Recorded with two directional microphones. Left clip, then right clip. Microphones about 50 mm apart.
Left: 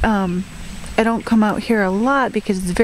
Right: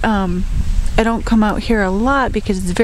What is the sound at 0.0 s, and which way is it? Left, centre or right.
Speech, centre.